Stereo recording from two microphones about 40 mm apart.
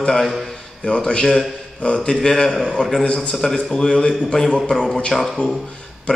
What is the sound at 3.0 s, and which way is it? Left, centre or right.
Speech, left.